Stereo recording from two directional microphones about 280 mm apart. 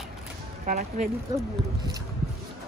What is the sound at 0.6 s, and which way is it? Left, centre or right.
Speech, right.